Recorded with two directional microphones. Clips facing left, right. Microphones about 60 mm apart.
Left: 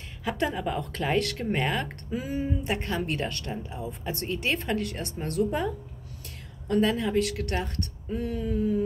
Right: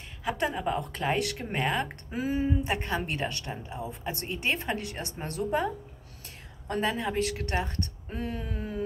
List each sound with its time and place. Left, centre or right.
0.2 s a woman's voice: centre
2.0 s speech: right
2.8 s a woman's voice: right
6.7 s a woman's voice: right
8.1 s a sound: right